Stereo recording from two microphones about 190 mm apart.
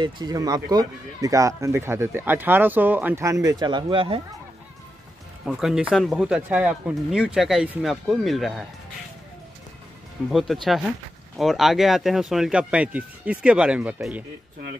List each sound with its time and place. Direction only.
0.0 s speech: 20° right (ahead or behind)
5.4 s speech: 5° right (ahead or behind)
10.3 s speech: centre (ahead or behind)